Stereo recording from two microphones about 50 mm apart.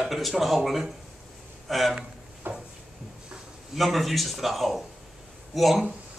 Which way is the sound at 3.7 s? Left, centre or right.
Centre.